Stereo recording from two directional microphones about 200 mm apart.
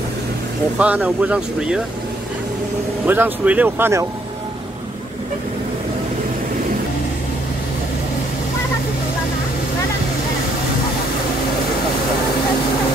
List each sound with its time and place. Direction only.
0.7 s speech: 5° right (ahead or behind)
3.1 s speech: 10° right (ahead or behind)